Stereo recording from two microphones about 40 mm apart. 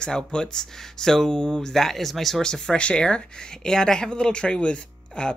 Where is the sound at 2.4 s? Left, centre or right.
Centre.